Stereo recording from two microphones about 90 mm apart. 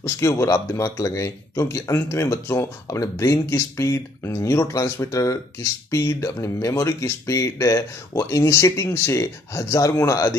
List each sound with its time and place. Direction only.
0.0 s speech: 30° left (ahead or behind)